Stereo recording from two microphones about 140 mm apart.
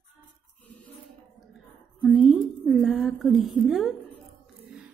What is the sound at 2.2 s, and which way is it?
A woman's voice, 5° right (ahead or behind).